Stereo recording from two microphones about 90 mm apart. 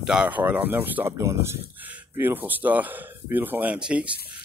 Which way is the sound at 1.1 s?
30° right (ahead or behind).